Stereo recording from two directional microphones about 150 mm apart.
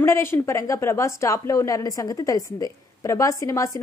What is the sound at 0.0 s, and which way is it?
Speech, 15° left (ahead or behind).